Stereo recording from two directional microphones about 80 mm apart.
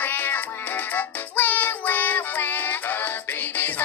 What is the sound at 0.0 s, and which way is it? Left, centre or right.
Music, left.